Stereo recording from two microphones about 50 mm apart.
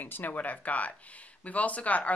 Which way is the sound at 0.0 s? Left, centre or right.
Left.